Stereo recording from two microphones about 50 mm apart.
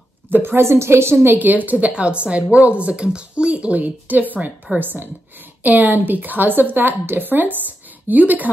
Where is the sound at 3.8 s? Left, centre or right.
Right.